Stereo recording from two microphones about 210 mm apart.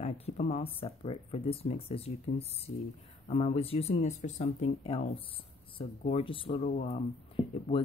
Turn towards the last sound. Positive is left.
turn(degrees=25)  # may be behind; listen again after turning